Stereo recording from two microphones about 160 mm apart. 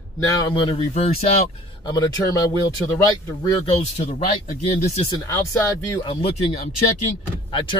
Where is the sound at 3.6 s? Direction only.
40° left (ahead or behind).